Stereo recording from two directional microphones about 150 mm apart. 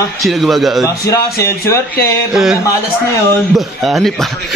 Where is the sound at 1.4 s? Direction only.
20° left (ahead or behind).